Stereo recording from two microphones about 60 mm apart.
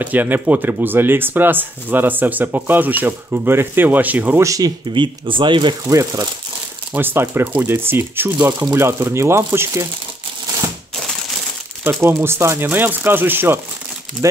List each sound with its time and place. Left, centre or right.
0.0 s speech: right
4.4 s speech: right
5.9 s speech: right
6.9 s speech: right
11.8 s speech: right
12.6 s speech: right
14.2 s speech: right